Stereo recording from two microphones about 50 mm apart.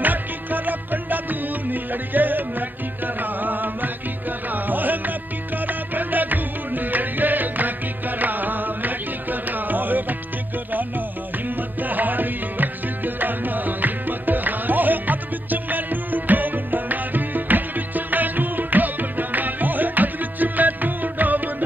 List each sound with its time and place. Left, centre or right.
0.0 s music: right